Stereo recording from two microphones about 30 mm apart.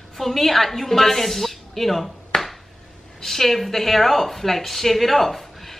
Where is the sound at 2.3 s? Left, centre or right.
Centre.